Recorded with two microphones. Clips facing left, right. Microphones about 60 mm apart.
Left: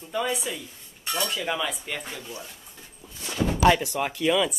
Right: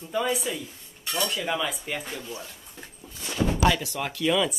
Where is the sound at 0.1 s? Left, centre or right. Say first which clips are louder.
Right 1 dB; centre.